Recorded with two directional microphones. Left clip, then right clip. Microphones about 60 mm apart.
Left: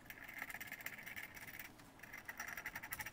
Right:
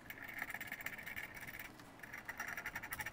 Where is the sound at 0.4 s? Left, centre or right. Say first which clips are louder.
Right 3 dB; centre.